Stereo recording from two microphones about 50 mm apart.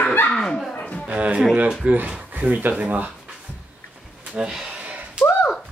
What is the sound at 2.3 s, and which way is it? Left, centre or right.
Speech, right.